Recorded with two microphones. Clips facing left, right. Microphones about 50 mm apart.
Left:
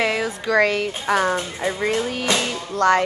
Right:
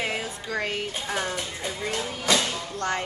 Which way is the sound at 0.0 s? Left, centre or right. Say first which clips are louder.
Left 8 dB; left.